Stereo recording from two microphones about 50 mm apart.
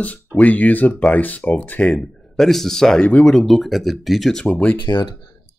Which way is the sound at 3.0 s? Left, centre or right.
Left.